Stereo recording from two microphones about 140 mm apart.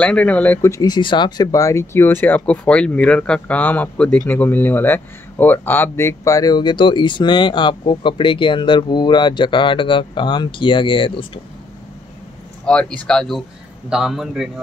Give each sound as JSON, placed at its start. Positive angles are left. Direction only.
{"t": 0.0, "sound": "speech", "side_deg": 10}
{"t": 12.6, "sound": "speech", "side_deg": 5}